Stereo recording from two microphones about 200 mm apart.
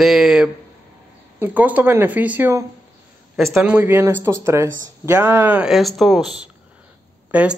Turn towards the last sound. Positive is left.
turn(degrees=-5)  # may be behind; listen again after turning